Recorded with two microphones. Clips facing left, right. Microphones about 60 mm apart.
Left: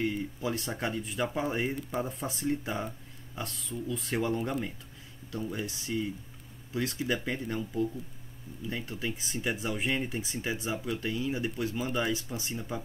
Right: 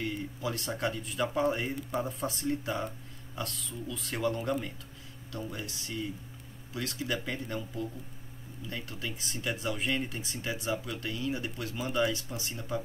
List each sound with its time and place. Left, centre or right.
0.0 s speech: centre
8.6 s speech: centre